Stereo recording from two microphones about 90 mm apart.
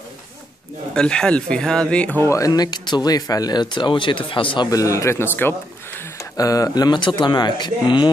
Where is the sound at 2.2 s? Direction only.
35° left (ahead or behind); by 4.7 s 70° left (ahead or behind).